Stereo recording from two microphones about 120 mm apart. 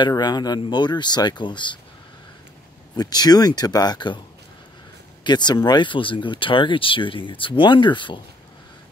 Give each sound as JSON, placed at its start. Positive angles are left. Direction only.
{"t": 0.0, "sound": "speech", "side_deg": 35}
{"t": 3.0, "sound": "speech", "side_deg": 35}
{"t": 5.2, "sound": "speech", "side_deg": 35}